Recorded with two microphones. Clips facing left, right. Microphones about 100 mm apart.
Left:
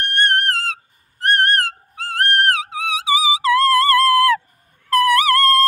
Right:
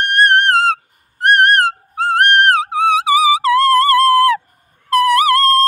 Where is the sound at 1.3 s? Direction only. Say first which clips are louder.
Right 6 dB; 70° right (ahead or behind); by 2.6 s 50° right (ahead or behind).